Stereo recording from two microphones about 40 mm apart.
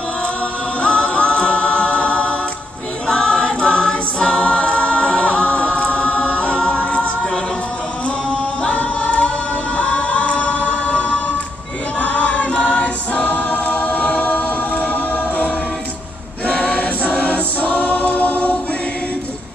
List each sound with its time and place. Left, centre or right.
0.8 s a capella: left
3.1 s choir: left
6.6 s a capella: left
8.6 s a capella: left
12.0 s choir: left
14.3 s a capella: left
16.4 s choir: left